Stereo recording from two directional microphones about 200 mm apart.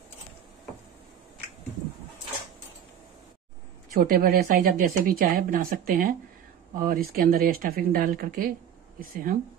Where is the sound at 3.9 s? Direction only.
45° right (ahead or behind).